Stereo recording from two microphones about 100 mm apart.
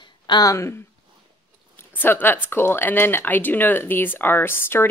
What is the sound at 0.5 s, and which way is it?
Speech, 25° left (ahead or behind).